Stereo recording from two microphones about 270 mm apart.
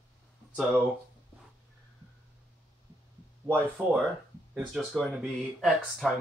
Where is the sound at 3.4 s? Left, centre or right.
Centre.